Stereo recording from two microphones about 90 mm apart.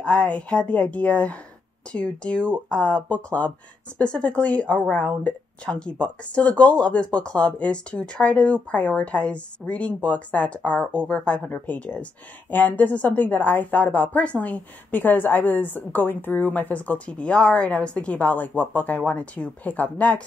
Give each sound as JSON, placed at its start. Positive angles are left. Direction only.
{"t": 0.0, "sound": "speech", "side_deg": 10}